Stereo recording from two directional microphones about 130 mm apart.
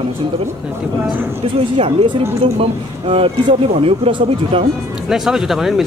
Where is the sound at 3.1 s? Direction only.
45° right (ahead or behind).